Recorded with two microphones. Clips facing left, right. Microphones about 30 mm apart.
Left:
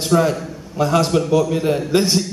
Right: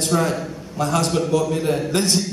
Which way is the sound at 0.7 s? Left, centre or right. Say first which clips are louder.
Left 4 dB; centre.